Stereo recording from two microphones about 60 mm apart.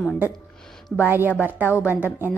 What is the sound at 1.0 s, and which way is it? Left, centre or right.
A woman's voice, right.